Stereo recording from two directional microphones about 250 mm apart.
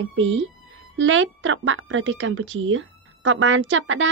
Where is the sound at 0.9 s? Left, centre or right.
Right.